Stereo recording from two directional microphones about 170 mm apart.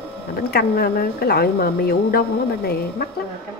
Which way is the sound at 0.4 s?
65° left (ahead or behind).